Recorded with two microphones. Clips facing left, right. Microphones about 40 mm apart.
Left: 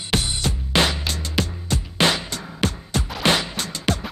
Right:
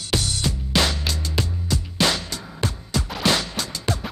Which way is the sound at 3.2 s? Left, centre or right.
Left.